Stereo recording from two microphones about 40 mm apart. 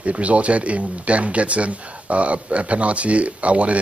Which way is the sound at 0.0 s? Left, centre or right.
Right.